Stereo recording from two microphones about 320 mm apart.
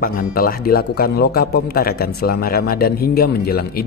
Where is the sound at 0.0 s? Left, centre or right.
Left.